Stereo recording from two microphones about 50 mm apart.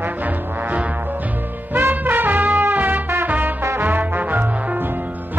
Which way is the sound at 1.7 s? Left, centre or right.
Right.